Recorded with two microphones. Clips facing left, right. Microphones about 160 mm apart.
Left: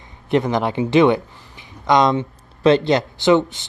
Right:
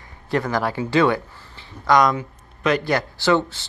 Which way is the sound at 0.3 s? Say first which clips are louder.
Left 4 dB; 20° left (ahead or behind).